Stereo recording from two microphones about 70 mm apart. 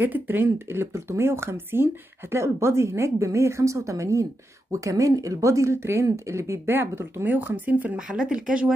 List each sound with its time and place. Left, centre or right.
0.0 s speech: right